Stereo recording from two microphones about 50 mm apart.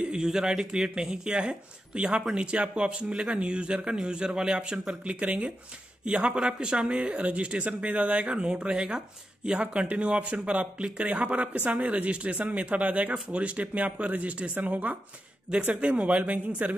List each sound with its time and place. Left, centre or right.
0.2 s speech: centre
5.2 s speech: right
15.7 s speech: right